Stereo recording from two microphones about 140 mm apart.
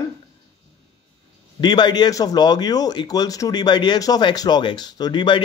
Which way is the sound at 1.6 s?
30° left (ahead or behind).